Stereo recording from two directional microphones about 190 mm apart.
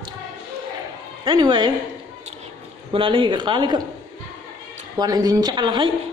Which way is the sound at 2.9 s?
25° right (ahead or behind).